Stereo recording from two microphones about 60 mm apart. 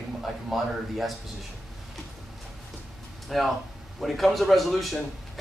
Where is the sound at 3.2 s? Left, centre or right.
Centre.